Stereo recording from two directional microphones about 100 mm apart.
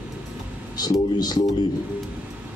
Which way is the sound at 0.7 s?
40° left (ahead or behind).